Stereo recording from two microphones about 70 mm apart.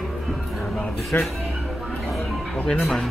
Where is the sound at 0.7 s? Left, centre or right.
Centre.